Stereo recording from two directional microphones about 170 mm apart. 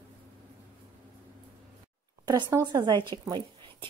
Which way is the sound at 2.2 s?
20° right (ahead or behind).